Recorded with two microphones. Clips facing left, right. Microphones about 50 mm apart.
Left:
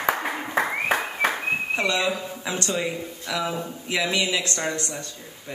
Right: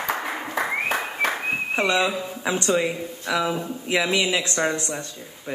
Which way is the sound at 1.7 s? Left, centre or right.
Right.